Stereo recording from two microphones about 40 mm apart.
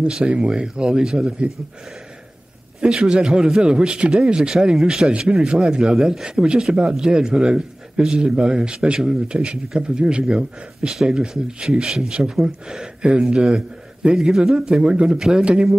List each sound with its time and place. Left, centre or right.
0.0 s speech: right
3.0 s a man's voice: right
5.9 s a man's voice: centre
6.2 s speech: right
14.1 s a man's voice: centre